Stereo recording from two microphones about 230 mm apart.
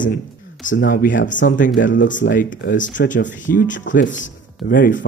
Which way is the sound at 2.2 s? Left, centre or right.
Left.